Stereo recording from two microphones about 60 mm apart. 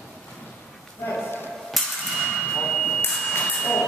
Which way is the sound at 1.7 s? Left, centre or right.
Centre.